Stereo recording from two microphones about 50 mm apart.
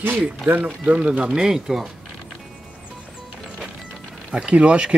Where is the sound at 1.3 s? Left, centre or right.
Centre.